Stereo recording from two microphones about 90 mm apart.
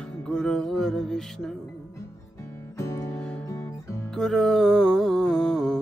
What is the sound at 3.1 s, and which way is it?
Music, 10° left (ahead or behind).